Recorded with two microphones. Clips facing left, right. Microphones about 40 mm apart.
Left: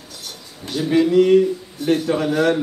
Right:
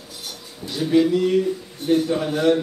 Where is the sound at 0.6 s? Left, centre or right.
Left.